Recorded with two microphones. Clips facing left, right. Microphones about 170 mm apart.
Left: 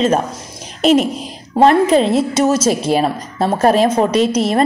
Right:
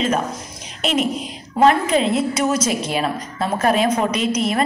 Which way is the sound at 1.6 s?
35° left (ahead or behind).